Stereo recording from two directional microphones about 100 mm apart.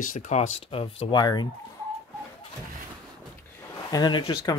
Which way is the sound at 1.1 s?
50° left (ahead or behind).